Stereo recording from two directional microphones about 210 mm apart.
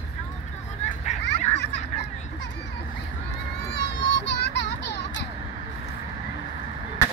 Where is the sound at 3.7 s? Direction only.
55° left (ahead or behind).